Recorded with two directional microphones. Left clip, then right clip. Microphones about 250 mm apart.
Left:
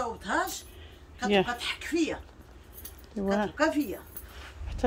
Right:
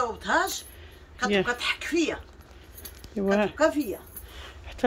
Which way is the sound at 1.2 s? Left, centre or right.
Centre.